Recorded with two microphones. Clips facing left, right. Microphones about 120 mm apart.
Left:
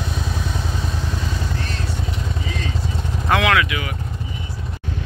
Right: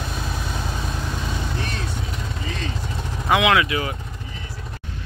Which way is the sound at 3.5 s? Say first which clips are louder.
Even; 30° right (ahead or behind).